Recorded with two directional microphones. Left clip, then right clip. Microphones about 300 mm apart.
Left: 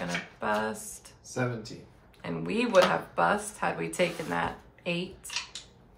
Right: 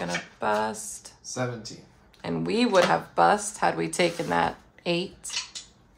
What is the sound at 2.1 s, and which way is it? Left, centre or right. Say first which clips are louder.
Speech: right 5 dB; right.